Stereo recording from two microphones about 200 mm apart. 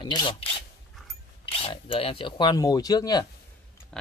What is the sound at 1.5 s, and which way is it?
Speech, 30° left (ahead or behind).